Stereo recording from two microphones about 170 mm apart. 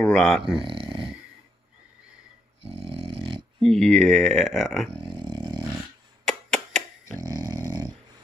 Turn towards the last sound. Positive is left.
turn(degrees=-20)  # may be behind; listen again after turning